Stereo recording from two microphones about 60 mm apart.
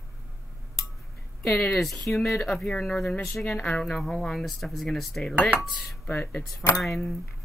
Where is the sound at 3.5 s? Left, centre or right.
Centre.